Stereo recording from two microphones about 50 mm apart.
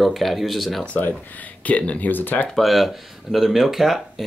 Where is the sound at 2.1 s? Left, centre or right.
Left.